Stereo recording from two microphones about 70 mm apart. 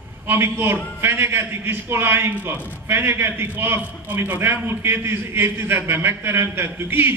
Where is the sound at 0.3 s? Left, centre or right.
Right.